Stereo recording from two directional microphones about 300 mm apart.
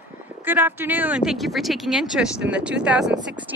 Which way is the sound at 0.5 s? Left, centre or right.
Centre.